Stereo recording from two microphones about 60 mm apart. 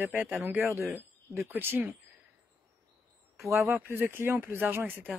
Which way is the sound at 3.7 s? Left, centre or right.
Right.